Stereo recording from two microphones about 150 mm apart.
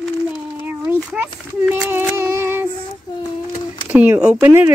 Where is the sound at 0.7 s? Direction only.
10° right (ahead or behind).